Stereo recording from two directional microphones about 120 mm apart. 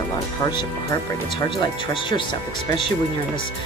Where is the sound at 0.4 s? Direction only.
35° left (ahead or behind).